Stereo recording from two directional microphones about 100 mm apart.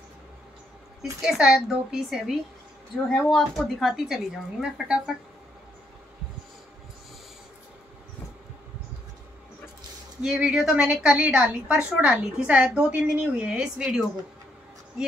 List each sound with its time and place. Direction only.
1.2 s speech: 5° right (ahead or behind)
3.1 s speech: 5° left (ahead or behind)
10.2 s a woman's voice: 5° right (ahead or behind)